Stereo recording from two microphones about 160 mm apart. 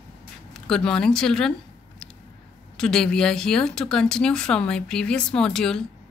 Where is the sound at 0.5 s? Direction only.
5° left (ahead or behind).